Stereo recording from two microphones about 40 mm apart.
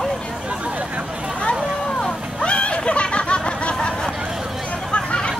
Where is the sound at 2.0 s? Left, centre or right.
Left.